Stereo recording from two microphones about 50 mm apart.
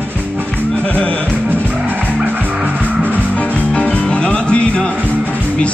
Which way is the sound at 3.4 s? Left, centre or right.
Left.